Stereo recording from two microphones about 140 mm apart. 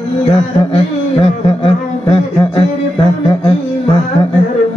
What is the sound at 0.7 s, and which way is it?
Speech, 45° left (ahead or behind).